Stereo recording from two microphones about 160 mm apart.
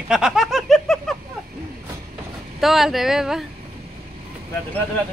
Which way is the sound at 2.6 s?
Centre (ahead or behind).